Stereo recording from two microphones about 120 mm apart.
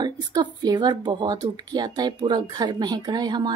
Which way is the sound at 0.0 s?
35° right (ahead or behind).